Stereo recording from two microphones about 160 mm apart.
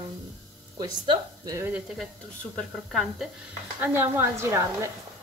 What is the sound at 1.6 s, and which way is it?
Speech, 5° right (ahead or behind).